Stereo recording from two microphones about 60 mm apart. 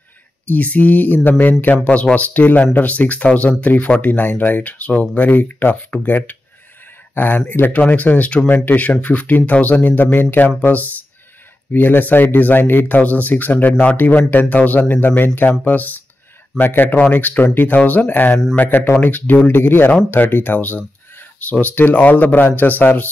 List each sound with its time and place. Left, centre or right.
0.5 s speech: left
11.7 s speech: left